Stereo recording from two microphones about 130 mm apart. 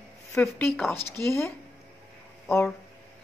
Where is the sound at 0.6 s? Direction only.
10° left (ahead or behind).